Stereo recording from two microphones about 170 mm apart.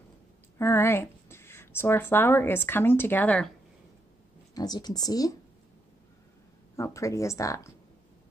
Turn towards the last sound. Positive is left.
turn(degrees=20)  # may be behind; listen again after turning